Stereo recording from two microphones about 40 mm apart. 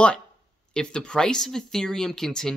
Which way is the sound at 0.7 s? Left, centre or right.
Centre.